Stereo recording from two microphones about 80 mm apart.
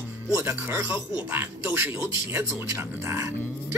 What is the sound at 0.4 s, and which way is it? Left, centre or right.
Speech, right.